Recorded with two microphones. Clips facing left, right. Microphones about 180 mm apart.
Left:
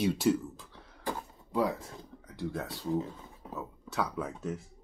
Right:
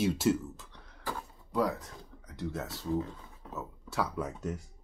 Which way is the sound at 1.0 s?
20° left (ahead or behind).